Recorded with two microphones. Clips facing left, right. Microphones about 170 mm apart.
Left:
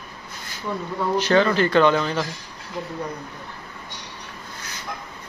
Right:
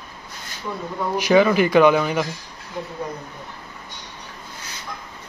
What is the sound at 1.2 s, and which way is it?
Speech, 10° right (ahead or behind).